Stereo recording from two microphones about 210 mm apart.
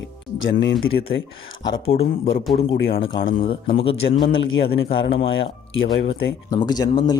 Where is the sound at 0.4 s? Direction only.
60° left (ahead or behind).